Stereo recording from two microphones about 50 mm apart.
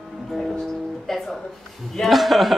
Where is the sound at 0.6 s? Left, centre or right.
Centre.